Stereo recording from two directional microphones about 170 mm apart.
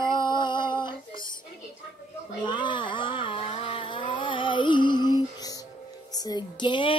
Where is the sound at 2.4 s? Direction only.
25° left (ahead or behind).